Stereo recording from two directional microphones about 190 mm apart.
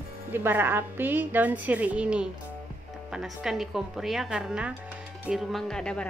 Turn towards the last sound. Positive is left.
turn(degrees=5)  # may be behind; listen again after turning